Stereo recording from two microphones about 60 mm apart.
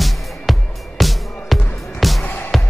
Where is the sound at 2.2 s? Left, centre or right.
Left.